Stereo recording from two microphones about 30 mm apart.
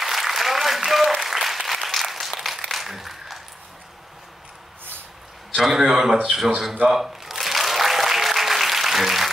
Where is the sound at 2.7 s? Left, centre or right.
Centre.